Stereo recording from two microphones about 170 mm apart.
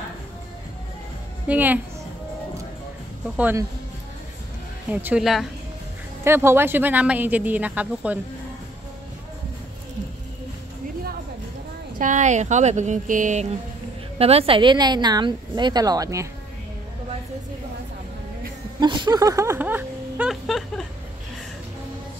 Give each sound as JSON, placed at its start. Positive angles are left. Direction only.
{"t": 1.5, "sound": "speech", "side_deg": -10}
{"t": 3.3, "sound": "speech", "side_deg": -10}
{"t": 4.9, "sound": "a woman's voice", "side_deg": -5}
{"t": 6.2, "sound": "speech", "side_deg": -15}
{"t": 12.0, "sound": "speech", "side_deg": -45}
{"t": 14.1, "sound": "a woman's voice", "side_deg": -35}
{"t": 18.8, "sound": "a sound", "side_deg": -25}